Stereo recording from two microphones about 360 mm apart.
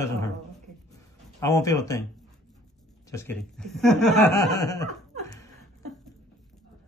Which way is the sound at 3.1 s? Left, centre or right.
Centre.